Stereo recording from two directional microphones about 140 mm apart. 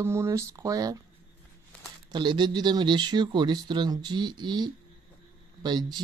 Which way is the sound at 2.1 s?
35° right (ahead or behind).